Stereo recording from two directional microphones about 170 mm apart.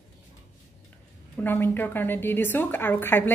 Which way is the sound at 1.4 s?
10° left (ahead or behind).